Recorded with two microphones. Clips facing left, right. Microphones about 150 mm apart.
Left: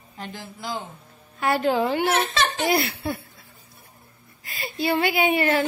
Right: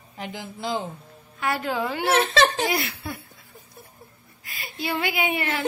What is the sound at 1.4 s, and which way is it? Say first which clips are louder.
A woman's voice: left 5 dB; 30° left (ahead or behind).